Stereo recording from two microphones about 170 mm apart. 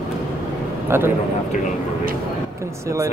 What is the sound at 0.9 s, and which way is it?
Speech, 15° right (ahead or behind).